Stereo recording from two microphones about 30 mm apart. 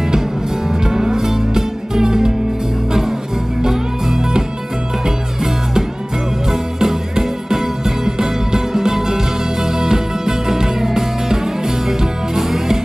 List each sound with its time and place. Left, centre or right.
0.7 s music: centre